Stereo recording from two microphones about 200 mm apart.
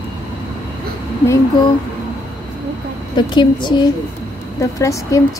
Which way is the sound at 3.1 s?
20° left (ahead or behind).